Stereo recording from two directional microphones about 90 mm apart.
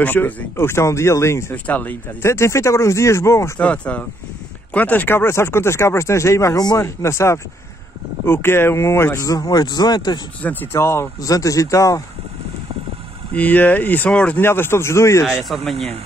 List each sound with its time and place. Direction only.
0.0 s speech: 25° left (ahead or behind)
1.5 s speech: 20° left (ahead or behind)
2.2 s speech: 30° left (ahead or behind)
3.5 s speech: 15° left (ahead or behind); by 10.2 s 50° left (ahead or behind)
10.4 s speech: 20° left (ahead or behind)
11.1 s speech: 40° left (ahead or behind)
13.3 s speech: 20° left (ahead or behind)
14.4 s speech: 25° left (ahead or behind)
15.4 s speech: centre (ahead or behind)